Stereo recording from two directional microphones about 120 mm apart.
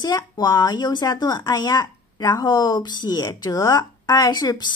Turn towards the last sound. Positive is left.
turn(degrees=35)  # may be behind; listen again after turning